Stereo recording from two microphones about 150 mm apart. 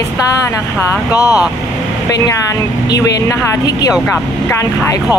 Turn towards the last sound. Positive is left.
turn(degrees=25)  # may be behind; listen again after turning